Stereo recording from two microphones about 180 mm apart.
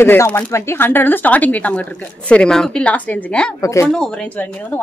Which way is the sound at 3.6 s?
15° left (ahead or behind).